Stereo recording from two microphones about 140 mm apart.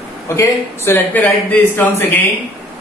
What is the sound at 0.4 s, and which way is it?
Speech, 15° left (ahead or behind).